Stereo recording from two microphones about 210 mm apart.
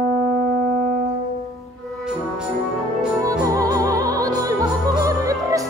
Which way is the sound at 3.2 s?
15° right (ahead or behind).